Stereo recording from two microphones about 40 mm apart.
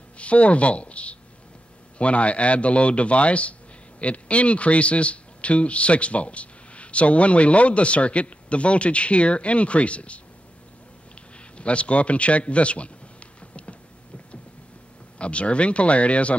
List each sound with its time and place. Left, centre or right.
0.2 s a man's voice: left
11.3 s a sound: left
15.1 s a man's voice: left